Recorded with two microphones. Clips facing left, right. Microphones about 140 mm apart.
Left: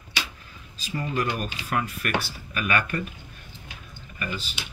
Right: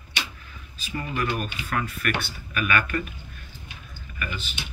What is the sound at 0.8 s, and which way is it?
Speech, 35° left (ahead or behind).